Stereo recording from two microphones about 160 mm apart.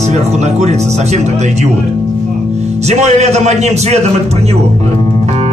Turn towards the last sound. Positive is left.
turn(degrees=-45)  # may be behind; listen again after turning